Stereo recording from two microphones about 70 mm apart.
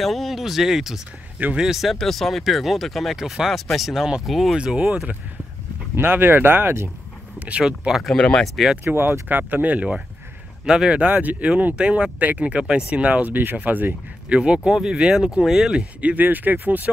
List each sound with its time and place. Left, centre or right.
0.0 s speech: centre
5.9 s speech: right
7.3 s speech: centre
7.6 s speech: centre
8.2 s speech: centre
8.8 s speech: right
14.4 s speech: centre